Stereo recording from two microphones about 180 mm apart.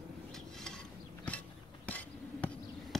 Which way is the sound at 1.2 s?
10° left (ahead or behind).